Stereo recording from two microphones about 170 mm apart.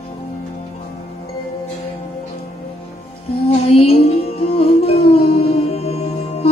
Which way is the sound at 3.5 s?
35° left (ahead or behind).